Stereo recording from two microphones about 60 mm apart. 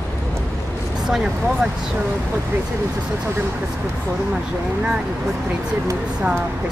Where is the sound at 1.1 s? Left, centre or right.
Centre.